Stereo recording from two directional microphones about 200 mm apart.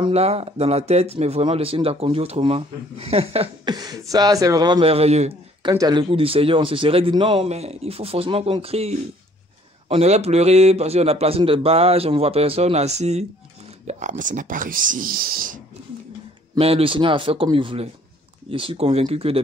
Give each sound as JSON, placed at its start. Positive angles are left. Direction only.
{"t": 0.0, "sound": "a man's voice", "side_deg": -30}
{"t": 16.5, "sound": "speech", "side_deg": -30}